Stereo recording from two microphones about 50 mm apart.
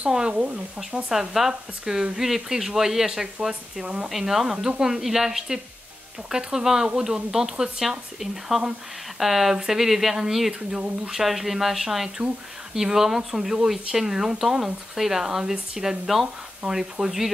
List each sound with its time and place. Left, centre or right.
0.0 s speech: centre
1.1 s speech: centre
4.1 s speech: centre